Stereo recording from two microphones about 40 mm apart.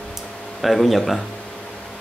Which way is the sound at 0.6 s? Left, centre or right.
Centre.